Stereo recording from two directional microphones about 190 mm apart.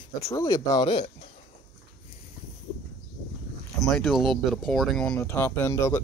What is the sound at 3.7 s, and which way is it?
Speech, centre (ahead or behind).